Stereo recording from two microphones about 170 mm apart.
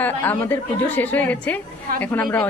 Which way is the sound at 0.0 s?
10° left (ahead or behind).